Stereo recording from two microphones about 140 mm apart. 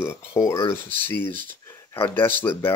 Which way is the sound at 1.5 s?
20° left (ahead or behind).